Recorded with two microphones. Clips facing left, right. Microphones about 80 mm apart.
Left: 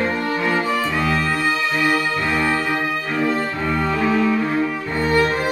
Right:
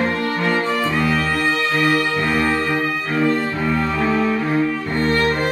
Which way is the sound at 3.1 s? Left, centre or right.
Centre.